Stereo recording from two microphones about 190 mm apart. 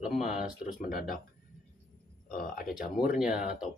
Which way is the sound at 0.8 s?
50° left (ahead or behind).